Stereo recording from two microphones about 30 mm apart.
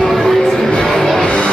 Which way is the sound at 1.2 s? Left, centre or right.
Left.